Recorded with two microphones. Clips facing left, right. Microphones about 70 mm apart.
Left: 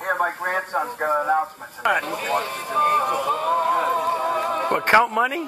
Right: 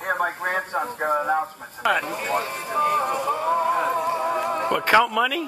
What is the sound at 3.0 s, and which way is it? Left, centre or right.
Music, centre.